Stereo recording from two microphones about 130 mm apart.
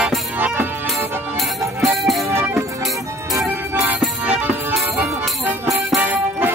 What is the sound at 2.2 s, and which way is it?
Music, 20° right (ahead or behind).